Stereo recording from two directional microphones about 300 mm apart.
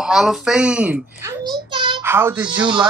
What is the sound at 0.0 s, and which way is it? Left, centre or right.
A child's voice, centre.